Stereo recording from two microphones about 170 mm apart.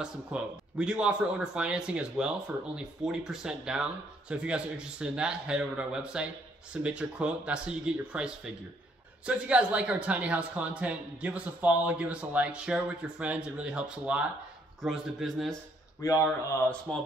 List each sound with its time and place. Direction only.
0.0 s speech: 5° right (ahead or behind)
16.0 s speech: 20° left (ahead or behind)
16.9 s speech: 5° left (ahead or behind)